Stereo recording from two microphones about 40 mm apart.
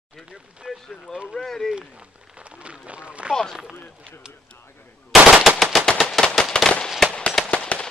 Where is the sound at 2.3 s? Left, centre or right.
Right.